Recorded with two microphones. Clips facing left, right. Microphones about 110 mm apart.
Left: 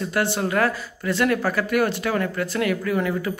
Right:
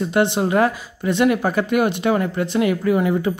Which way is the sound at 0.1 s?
20° right (ahead or behind).